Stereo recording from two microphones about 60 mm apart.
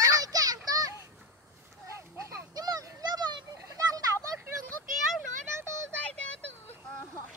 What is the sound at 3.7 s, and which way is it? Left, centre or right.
Children playing, right.